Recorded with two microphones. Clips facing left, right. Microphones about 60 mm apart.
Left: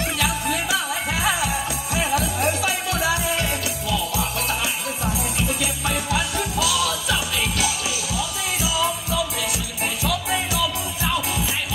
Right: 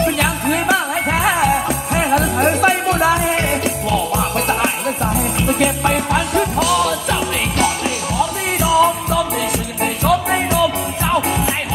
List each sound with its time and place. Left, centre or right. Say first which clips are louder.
0.0 s music: right 7 dB; right